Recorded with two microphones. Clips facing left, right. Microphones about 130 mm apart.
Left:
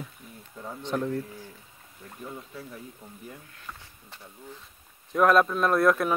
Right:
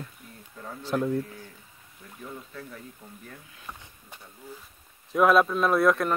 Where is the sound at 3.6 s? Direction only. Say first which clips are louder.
Right 1 dB; 15° right (ahead or behind).